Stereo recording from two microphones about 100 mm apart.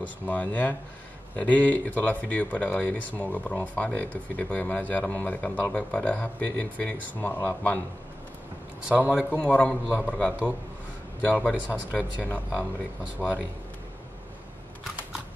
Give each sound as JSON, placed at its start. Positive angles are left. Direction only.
{"t": 0.0, "sound": "speech", "side_deg": 15}
{"t": 8.8, "sound": "a man's voice", "side_deg": -15}
{"t": 9.3, "sound": "speech", "side_deg": 15}